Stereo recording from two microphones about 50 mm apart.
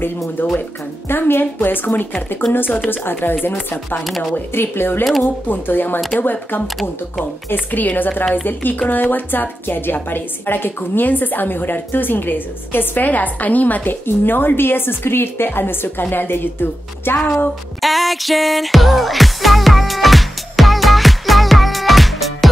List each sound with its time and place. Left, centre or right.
0.4 s a woman's voice: left
4.6 s a woman's voice: left
17.7 s music: centre